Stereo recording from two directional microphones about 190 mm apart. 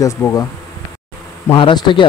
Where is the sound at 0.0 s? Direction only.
15° left (ahead or behind).